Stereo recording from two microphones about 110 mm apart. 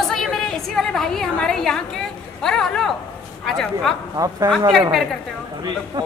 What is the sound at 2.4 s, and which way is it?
A woman's voice, 5° left (ahead or behind).